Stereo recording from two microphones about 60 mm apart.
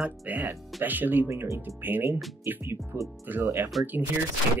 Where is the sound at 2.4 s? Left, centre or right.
Right.